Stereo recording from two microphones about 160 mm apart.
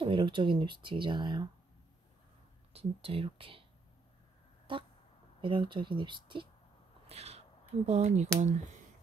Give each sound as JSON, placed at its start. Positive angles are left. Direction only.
{"t": 0.0, "sound": "speech", "side_deg": -30}
{"t": 2.7, "sound": "speech", "side_deg": -35}
{"t": 4.7, "sound": "speech", "side_deg": -30}
{"t": 7.1, "sound": "a sound", "side_deg": -40}
{"t": 8.4, "sound": "speech", "side_deg": -45}